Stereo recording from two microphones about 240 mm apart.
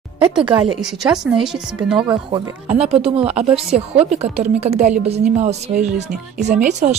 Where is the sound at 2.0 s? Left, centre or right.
Centre.